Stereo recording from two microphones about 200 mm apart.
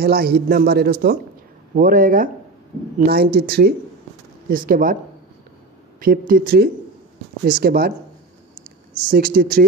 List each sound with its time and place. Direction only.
0.0 s speech: 50° right (ahead or behind)
5.9 s speech: 45° right (ahead or behind)
9.1 s speech: 45° right (ahead or behind)